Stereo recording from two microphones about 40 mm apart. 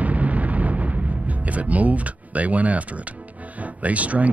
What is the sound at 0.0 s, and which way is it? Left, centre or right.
Music, right.